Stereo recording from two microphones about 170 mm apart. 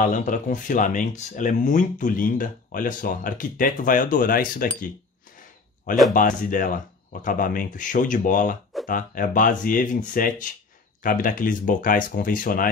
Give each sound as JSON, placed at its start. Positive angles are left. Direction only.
{"t": 0.0, "sound": "speech", "side_deg": 50}
{"t": 6.1, "sound": "speech", "side_deg": 50}